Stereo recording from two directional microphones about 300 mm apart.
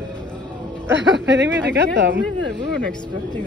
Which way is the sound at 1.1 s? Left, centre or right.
Right.